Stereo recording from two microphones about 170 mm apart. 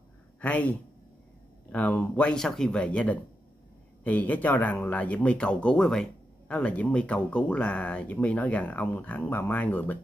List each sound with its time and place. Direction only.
0.4 s speech: 10° left (ahead or behind)